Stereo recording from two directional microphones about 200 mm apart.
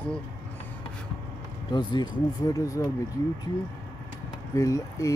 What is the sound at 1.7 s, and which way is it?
Speech, 20° left (ahead or behind).